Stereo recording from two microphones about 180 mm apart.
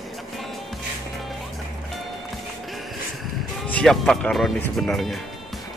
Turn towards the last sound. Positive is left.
turn(degrees=0)  # may be behind; listen again after turning